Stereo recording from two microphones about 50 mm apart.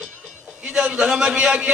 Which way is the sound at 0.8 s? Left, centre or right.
Centre.